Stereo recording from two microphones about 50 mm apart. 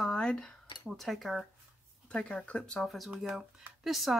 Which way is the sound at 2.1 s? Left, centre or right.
Left.